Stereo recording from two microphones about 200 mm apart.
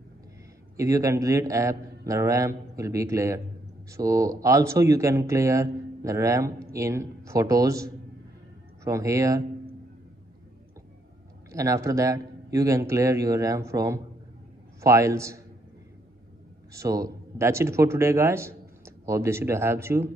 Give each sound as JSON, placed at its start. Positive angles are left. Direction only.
{"t": 0.7, "sound": "speech", "side_deg": -15}
{"t": 11.5, "sound": "speech", "side_deg": -15}
{"t": 16.7, "sound": "speech", "side_deg": -15}